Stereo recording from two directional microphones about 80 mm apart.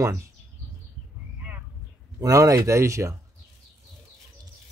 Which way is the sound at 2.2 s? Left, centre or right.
Right.